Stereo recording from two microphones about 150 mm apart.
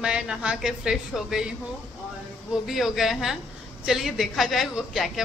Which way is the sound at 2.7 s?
Centre (ahead or behind).